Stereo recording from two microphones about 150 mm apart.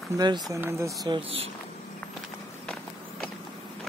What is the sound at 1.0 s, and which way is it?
Speech, 30° right (ahead or behind).